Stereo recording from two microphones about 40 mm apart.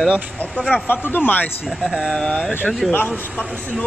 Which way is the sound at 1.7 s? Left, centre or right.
Centre.